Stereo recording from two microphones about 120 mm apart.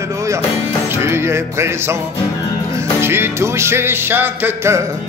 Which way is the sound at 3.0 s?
20° right (ahead or behind).